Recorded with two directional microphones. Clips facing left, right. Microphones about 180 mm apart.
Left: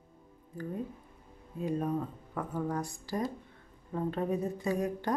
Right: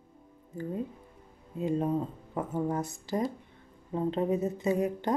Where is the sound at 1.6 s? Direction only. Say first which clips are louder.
Right 3 dB; 25° right (ahead or behind).